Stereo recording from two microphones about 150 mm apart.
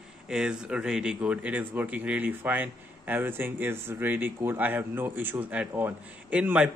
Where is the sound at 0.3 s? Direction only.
5° right (ahead or behind).